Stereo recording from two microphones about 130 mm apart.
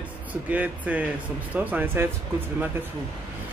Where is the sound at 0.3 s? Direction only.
10° right (ahead or behind).